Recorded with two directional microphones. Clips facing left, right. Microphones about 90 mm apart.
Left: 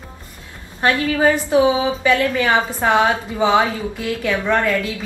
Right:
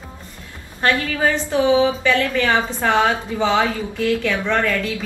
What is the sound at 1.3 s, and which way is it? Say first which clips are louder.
A woman's voice: left 1 dB; 15° left (ahead or behind).